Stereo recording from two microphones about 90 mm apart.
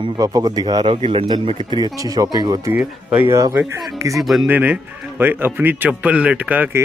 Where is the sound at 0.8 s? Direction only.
90° right.